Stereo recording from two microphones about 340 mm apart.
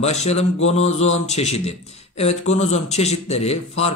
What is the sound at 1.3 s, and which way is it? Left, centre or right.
A man's voice, centre.